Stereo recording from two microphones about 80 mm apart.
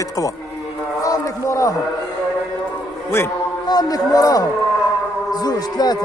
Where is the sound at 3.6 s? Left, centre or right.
Left.